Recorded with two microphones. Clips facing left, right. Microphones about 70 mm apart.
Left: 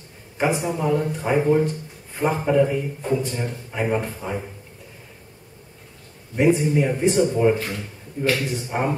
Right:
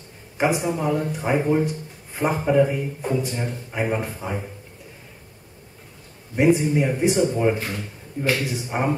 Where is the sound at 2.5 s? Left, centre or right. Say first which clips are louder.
Even; centre.